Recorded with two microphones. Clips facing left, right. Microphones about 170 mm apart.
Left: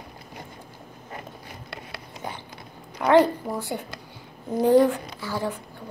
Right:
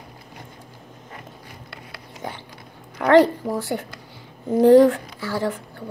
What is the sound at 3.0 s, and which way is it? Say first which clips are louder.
Speech: right 3 dB; 75° right (ahead or behind).